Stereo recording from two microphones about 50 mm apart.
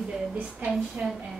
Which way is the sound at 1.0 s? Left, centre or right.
Centre.